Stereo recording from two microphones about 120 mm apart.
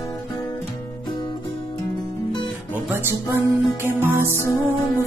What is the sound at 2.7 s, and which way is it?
Music, 15° right (ahead or behind).